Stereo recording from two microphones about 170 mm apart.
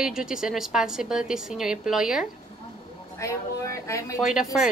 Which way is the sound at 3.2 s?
20° left (ahead or behind).